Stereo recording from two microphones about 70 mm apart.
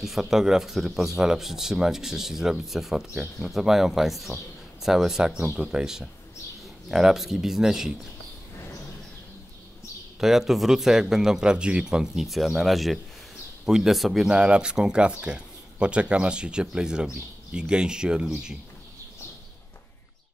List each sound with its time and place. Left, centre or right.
0.0 s speech: centre
10.2 s speech: centre
14.3 s speech: centre